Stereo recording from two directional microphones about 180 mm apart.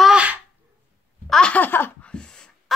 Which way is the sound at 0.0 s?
5° right (ahead or behind).